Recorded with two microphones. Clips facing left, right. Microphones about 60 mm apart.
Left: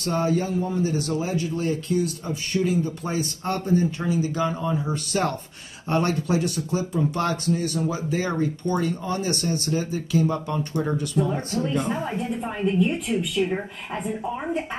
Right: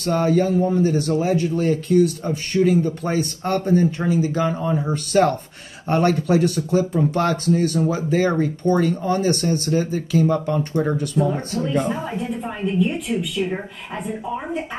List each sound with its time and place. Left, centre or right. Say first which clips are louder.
0.0 s a man's voice: right 5 dB; right
2.2 s a man's voice: right 6 dB; right
4.0 s speech: right 4 dB; right
4.7 s speech: right 7 dB; right
6.2 s speech: right 6 dB; right
13.4 s speech: left 1 dB; centre